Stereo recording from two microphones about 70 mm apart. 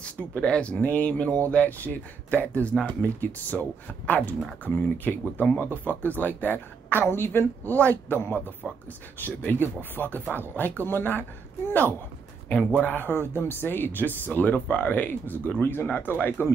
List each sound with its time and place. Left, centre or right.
0.4 s speech: centre
8.6 s speech: centre
9.2 s speech: left